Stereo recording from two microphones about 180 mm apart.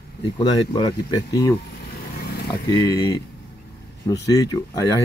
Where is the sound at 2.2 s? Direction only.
60° left (ahead or behind).